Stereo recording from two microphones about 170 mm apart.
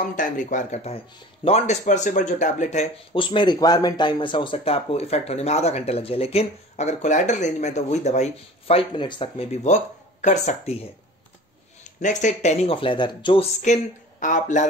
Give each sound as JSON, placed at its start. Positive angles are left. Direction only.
{"t": 0.0, "sound": "speech", "side_deg": 50}
{"t": 3.2, "sound": "speech", "side_deg": 30}
{"t": 14.2, "sound": "speech", "side_deg": 45}